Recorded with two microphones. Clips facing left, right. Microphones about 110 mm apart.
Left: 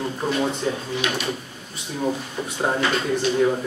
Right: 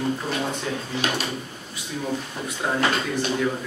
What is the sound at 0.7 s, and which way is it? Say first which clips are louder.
Speech: left 4 dB; 25° left (ahead or behind).